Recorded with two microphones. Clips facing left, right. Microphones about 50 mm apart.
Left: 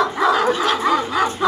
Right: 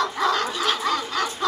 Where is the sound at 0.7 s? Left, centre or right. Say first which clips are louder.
Left 6 dB; centre.